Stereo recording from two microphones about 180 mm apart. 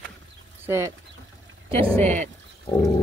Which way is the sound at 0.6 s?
15° right (ahead or behind).